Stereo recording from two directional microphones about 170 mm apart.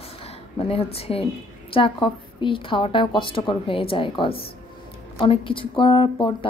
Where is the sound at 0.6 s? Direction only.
35° left (ahead or behind).